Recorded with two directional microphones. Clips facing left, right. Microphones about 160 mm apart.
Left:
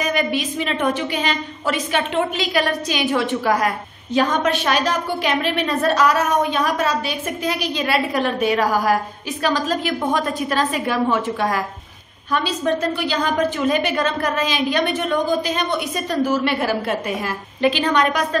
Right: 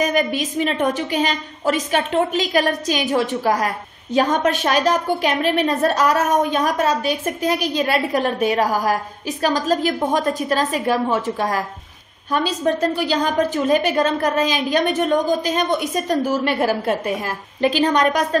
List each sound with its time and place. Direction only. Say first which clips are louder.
0.0 s a woman's voice: right 2 dB; 40° right (ahead or behind)